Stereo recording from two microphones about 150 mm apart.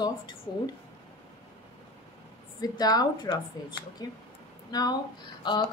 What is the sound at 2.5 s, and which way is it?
Speech, 25° left (ahead or behind).